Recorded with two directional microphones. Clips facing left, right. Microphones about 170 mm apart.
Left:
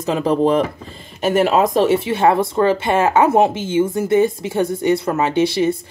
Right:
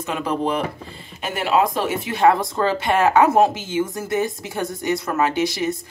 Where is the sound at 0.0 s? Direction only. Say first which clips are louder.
Left 7 dB; 35° left (ahead or behind).